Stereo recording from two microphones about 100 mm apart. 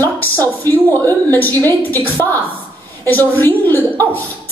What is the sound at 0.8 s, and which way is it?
A woman's voice, 20° left (ahead or behind).